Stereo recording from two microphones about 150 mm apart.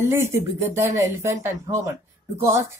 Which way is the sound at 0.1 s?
15° right (ahead or behind).